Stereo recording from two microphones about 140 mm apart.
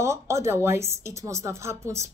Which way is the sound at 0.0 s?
20° right (ahead or behind).